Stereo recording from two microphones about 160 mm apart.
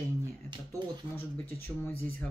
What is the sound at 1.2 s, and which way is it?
Speech, 15° left (ahead or behind).